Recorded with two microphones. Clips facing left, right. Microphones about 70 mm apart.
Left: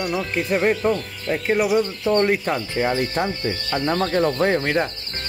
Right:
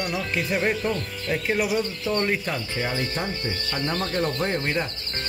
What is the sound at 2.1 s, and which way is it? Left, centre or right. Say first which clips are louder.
Speech: left 7 dB; left.